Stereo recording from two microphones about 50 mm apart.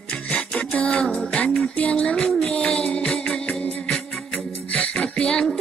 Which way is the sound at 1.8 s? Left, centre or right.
Left.